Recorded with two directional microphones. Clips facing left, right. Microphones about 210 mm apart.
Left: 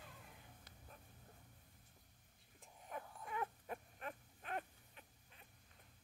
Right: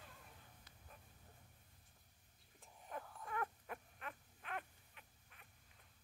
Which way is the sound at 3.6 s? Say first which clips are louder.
Left 3 dB; 35° left (ahead or behind).